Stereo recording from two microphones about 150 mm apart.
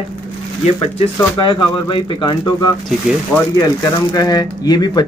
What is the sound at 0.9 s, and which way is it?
Speech, 30° left (ahead or behind).